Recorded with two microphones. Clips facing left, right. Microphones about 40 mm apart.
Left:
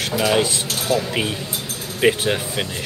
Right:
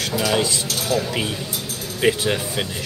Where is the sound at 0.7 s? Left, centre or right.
Left.